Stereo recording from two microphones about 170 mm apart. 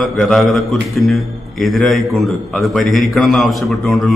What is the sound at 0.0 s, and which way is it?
A man's voice, centre (ahead or behind).